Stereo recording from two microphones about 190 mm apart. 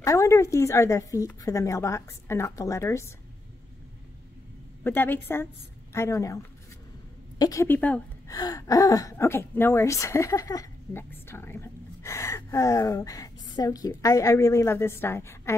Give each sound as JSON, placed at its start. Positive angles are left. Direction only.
{"t": 0.0, "sound": "speech", "side_deg": 15}
{"t": 4.8, "sound": "a woman's voice", "side_deg": 10}